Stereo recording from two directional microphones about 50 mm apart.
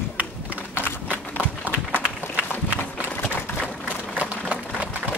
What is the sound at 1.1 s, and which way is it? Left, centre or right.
Horse, right.